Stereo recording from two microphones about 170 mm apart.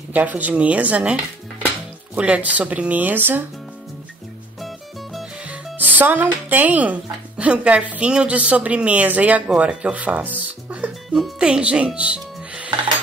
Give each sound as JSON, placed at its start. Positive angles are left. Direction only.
{"t": 0.1, "sound": "speech", "side_deg": -10}
{"t": 4.6, "sound": "speech", "side_deg": 0}